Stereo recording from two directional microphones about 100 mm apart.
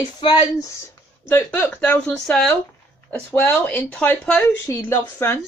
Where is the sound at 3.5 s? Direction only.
20° left (ahead or behind).